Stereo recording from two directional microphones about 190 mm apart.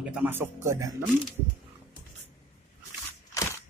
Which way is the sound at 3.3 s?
15° left (ahead or behind).